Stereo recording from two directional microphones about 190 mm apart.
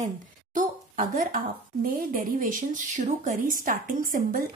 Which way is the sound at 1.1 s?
45° right (ahead or behind).